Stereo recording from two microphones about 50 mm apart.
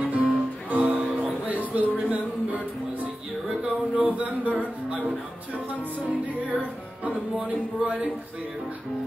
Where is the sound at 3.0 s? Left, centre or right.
Right.